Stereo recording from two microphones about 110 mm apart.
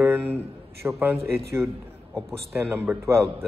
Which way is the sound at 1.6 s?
Centre (ahead or behind).